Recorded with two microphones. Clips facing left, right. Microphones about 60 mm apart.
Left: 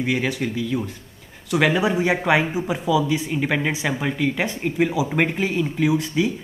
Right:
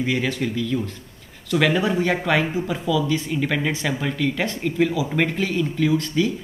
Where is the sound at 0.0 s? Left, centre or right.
Centre.